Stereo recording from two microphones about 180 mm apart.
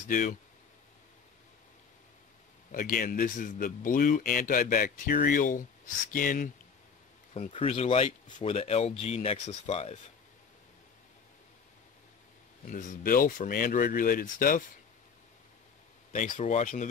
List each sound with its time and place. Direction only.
0.0 s speech: 45° left (ahead or behind)
2.7 s speech: 50° left (ahead or behind)
7.5 s speech: 35° left (ahead or behind)
12.6 s speech: 50° left (ahead or behind)
16.1 s speech: 45° left (ahead or behind)